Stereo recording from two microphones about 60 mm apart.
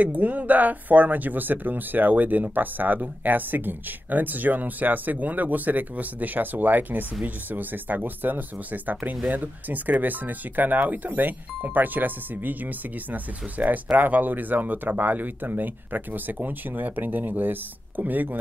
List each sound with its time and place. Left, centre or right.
0.0 s speech: right